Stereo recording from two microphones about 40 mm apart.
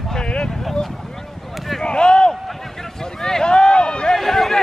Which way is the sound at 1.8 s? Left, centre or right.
Left.